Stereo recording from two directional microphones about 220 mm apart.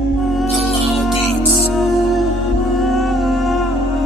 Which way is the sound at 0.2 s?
Centre (ahead or behind).